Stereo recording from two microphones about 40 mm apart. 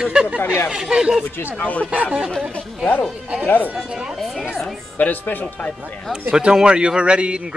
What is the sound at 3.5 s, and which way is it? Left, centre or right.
Speech, left.